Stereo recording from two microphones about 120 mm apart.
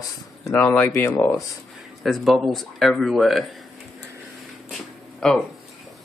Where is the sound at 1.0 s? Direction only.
25° left (ahead or behind).